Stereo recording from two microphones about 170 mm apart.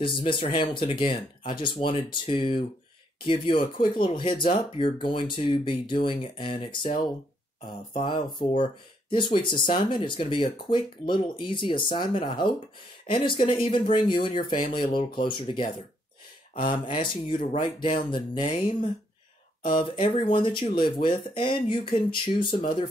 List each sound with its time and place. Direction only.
0.0 s speech: 30° left (ahead or behind)
8.0 s speech: 30° left (ahead or behind)